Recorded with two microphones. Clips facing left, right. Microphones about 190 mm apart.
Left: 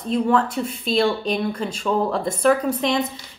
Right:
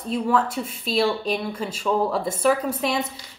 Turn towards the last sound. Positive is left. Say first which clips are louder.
# left 3 dB
turn(degrees=-5)  # may be behind; listen again after turning